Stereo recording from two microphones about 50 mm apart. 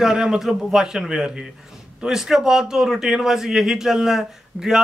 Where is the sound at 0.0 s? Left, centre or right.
Centre.